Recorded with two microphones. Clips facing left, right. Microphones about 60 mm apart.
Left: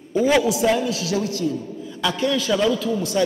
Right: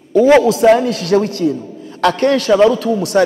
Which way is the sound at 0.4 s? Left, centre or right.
Right.